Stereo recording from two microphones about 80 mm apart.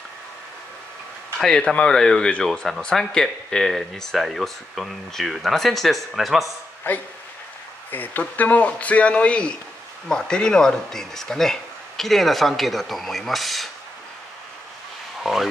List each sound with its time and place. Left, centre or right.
1.4 s speech: centre
6.8 s speech: left; by 13.7 s centre
15.2 s a sound: centre